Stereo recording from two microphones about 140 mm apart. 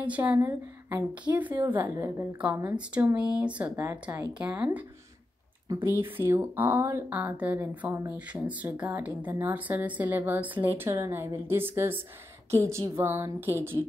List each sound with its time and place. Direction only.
0.0 s a woman's voice: 10° right (ahead or behind)